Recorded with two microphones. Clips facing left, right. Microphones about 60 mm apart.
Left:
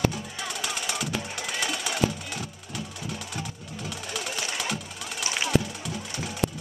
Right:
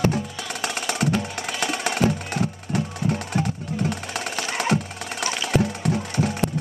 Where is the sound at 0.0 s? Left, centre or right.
Right.